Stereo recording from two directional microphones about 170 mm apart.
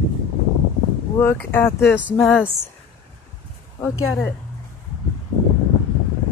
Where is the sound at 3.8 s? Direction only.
20° left (ahead or behind).